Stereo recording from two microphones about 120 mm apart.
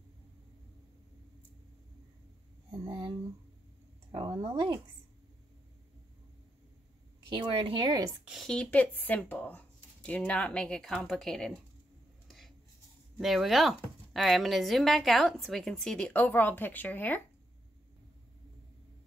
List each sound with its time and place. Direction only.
2.7 s a sound: 40° right (ahead or behind)
4.4 s speech: 55° right (ahead or behind)
7.2 s speech: 45° right (ahead or behind)
8.3 s speech: centre (ahead or behind)
13.2 s a woman's voice: centre (ahead or behind); by 17.2 s 15° left (ahead or behind)